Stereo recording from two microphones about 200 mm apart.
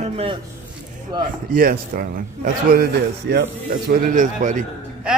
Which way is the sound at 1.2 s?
45° right (ahead or behind).